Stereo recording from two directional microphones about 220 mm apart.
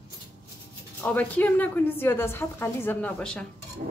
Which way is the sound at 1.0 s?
10° left (ahead or behind).